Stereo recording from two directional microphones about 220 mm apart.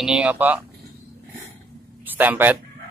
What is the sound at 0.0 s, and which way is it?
Speech, 5° right (ahead or behind).